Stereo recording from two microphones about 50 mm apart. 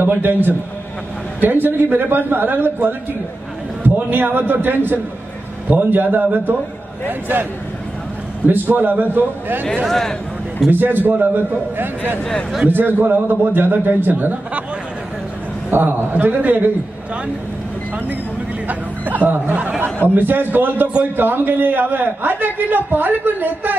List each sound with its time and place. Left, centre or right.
0.0 s a man's voice: right
8.5 s a man's voice: right
9.8 s a man's voice: centre
10.7 s a man's voice: right
12.2 s a man's voice: centre
12.6 s a man's voice: right
15.7 s a man's voice: right
18.7 s a man's voice: right